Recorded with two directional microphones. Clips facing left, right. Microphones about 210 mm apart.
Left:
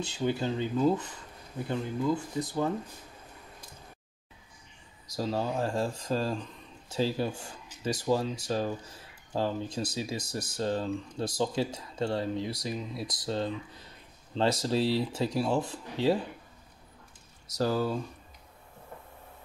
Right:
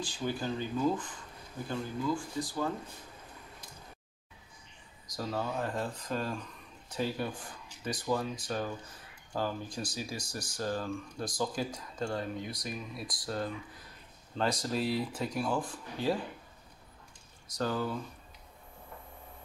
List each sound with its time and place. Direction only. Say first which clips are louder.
0.0 s speech: left 5 dB; 25° left (ahead or behind)
5.1 s speech: left 4 dB; 25° left (ahead or behind)
17.6 s speech: left 5 dB; 30° left (ahead or behind)